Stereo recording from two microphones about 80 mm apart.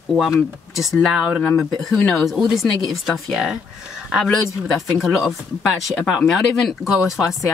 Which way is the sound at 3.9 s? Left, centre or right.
Centre.